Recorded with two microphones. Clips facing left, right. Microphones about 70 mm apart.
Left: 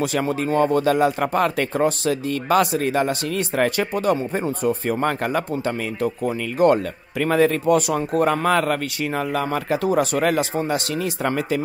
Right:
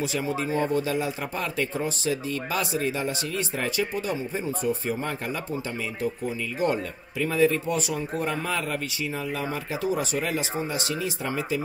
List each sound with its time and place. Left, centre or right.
0.0 s speech: left